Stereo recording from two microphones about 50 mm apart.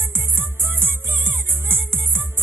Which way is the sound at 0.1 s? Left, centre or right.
Right.